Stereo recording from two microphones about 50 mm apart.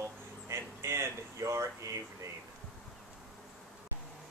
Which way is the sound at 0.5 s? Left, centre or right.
Right.